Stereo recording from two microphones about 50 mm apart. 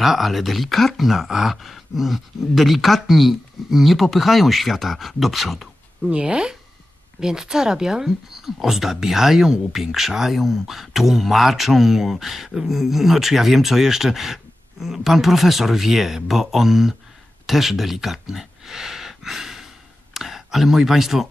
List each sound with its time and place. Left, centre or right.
0.0 s speech: centre
6.0 s speech: right